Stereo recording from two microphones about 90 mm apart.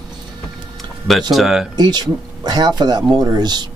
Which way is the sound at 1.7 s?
50° right (ahead or behind).